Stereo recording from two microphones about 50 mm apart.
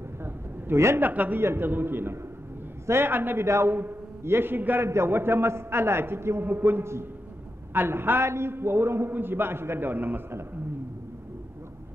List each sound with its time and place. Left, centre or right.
0.9 s a man's voice: right
1.4 s a man's voice: right
4.8 s a man's voice: right
6.4 s a man's voice: right